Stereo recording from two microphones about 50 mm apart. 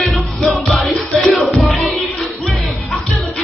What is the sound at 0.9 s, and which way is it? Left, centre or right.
Music, left.